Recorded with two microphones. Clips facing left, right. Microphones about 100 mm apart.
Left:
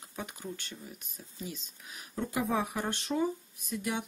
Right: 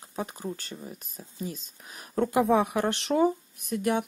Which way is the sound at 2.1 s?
55° right (ahead or behind).